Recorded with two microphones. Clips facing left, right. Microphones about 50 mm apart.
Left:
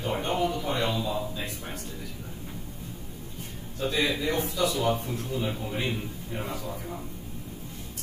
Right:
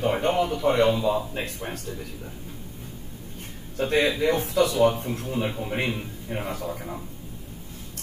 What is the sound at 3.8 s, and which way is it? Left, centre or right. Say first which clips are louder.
Speech: right 5 dB; right.